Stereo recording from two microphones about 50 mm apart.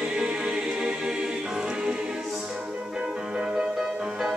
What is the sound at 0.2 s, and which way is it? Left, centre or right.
Music, centre.